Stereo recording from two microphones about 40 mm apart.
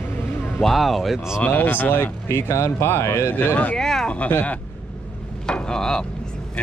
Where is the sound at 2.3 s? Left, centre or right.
Left.